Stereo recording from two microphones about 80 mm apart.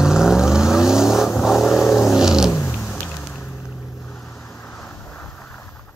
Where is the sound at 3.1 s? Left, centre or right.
Centre.